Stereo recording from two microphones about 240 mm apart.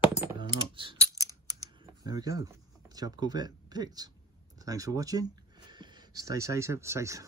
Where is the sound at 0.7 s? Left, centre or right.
Centre.